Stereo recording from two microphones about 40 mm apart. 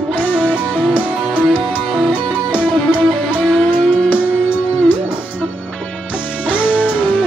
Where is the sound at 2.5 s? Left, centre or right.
Right.